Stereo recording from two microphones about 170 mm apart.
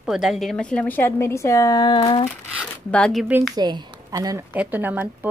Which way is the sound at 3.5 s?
25° right (ahead or behind).